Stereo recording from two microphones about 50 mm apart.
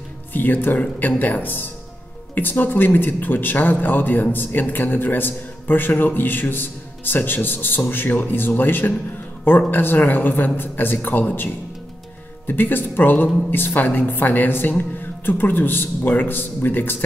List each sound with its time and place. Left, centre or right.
0.3 s speech: left